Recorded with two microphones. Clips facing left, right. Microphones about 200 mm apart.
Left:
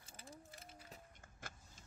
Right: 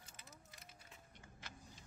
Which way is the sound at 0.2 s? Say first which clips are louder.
Left 9 dB; 30° left (ahead or behind).